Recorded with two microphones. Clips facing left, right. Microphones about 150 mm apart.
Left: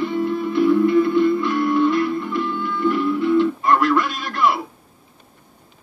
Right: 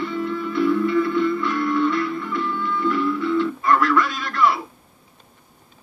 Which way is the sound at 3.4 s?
25° left (ahead or behind).